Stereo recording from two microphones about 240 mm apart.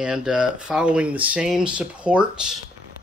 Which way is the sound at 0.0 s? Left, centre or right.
Centre.